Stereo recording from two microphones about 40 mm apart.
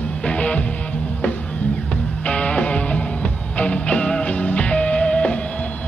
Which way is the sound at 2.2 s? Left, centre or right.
Left.